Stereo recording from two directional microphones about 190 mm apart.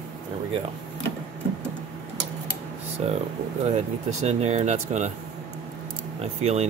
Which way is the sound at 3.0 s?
30° right (ahead or behind).